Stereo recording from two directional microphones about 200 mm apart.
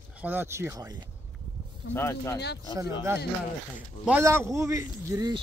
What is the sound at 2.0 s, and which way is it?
Speech, 15° left (ahead or behind).